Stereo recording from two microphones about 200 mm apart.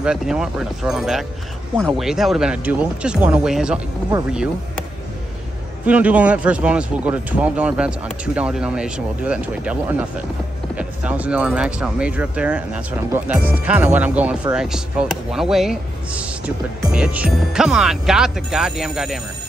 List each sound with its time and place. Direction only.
0.0 s speech: 5° right (ahead or behind)
5.9 s speech: 5° right (ahead or behind)